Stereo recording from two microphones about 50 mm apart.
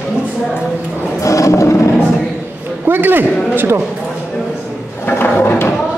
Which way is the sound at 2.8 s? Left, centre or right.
Right.